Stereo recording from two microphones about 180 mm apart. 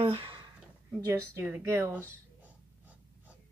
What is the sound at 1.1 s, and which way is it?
Speech, 15° right (ahead or behind).